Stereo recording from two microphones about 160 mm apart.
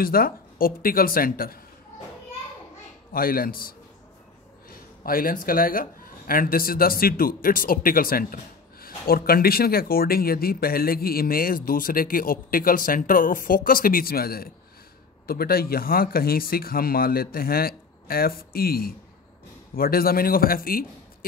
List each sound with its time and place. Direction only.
0.0 s speech: 65° left (ahead or behind)
3.1 s a man's voice: 65° left (ahead or behind)